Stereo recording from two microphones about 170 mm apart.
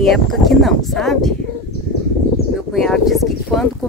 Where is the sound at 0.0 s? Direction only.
Centre (ahead or behind).